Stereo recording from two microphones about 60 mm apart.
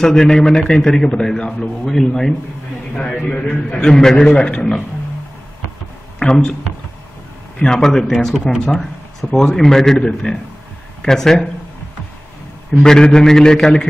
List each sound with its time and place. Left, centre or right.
0.0 s a man's voice: centre
6.1 s speech: centre
7.5 s a man's voice: centre
12.8 s a man's voice: centre